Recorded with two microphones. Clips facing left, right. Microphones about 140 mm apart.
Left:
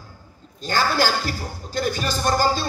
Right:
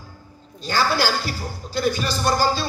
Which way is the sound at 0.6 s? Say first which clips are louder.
Even; 45° left (ahead or behind).